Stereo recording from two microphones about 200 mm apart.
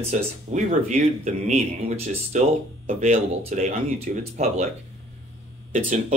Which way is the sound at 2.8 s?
40° right (ahead or behind).